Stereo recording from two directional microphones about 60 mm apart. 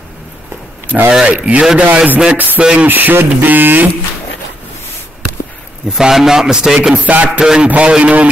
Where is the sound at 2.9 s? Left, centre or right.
Right.